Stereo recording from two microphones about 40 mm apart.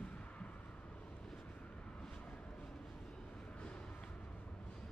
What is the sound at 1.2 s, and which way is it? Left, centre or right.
Vehicle, centre.